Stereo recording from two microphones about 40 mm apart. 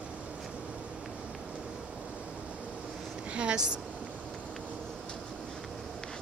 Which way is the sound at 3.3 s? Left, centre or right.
Right.